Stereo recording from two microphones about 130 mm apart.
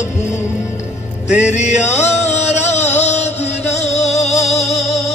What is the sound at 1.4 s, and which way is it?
Music, 65° left (ahead or behind).